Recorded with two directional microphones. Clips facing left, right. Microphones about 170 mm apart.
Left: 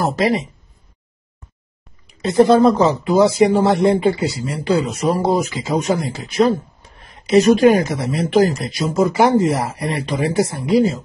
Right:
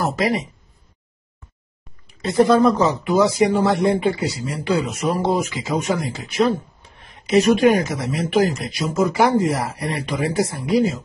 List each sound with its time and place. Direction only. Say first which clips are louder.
0.0 s speech: left 3 dB; 30° left (ahead or behind)
2.0 s speech: left 3 dB; 25° left (ahead or behind)